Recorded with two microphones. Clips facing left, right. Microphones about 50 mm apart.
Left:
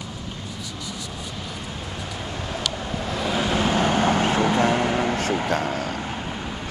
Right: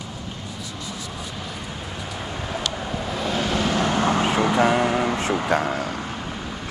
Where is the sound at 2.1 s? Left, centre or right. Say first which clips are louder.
Right 2 dB; centre; by 4.2 s left.